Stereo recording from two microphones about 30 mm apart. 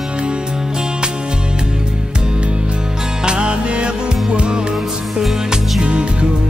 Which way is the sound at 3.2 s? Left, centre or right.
Right.